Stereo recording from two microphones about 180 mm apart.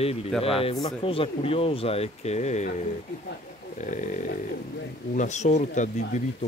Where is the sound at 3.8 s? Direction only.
45° left (ahead or behind).